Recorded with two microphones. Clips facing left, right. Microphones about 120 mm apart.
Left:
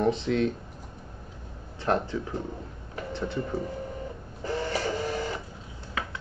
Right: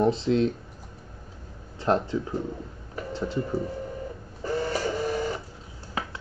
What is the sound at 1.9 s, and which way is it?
Speech, 25° right (ahead or behind).